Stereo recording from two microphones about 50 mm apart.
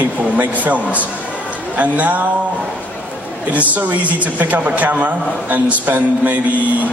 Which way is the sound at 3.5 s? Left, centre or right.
Right.